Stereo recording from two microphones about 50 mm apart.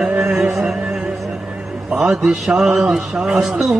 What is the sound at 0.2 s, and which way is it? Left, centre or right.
Music, centre.